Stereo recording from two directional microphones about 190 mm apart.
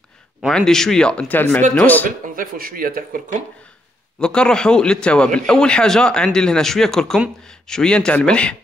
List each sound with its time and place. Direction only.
0.4 s a man's voice: centre (ahead or behind)
2.0 s speech: 45° right (ahead or behind)
4.2 s a man's voice: 5° left (ahead or behind)